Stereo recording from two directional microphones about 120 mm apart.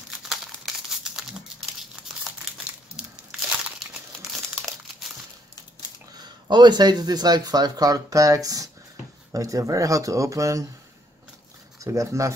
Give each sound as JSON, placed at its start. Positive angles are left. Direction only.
{"t": 0.3, "sound": "crumpling", "side_deg": 0}
{"t": 3.9, "sound": "crumpling", "side_deg": 0}
{"t": 6.1, "sound": "speech", "side_deg": -35}
{"t": 11.8, "sound": "speech", "side_deg": -25}